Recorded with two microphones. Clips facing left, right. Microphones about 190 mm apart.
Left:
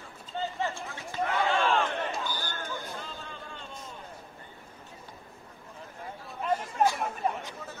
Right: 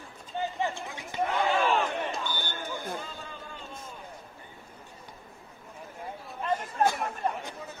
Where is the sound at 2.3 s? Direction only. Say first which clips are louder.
Even; 25° right (ahead or behind).